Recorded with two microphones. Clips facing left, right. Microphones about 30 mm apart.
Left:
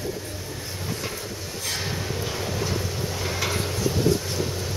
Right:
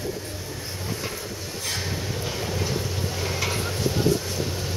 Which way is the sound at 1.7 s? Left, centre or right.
Centre.